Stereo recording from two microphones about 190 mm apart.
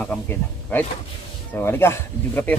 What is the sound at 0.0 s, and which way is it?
Speech, 5° left (ahead or behind).